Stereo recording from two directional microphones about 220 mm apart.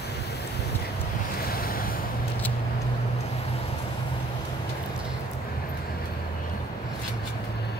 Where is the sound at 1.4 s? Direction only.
40° left (ahead or behind).